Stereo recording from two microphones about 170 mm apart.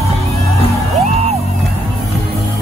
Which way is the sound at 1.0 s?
40° right (ahead or behind).